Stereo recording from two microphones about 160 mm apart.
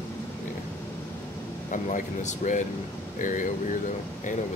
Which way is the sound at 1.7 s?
50° left (ahead or behind).